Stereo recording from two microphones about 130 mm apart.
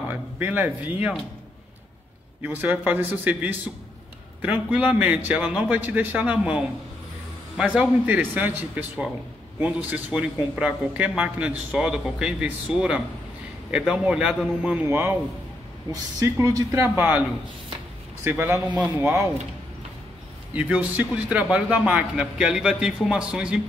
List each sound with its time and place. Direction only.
0.1 s a man's voice: 15° right (ahead or behind)
2.4 s a man's voice: 15° right (ahead or behind)
15.9 s speech: 25° right (ahead or behind)
18.4 s a man's voice: 15° right (ahead or behind)
20.5 s a man's voice: 10° right (ahead or behind)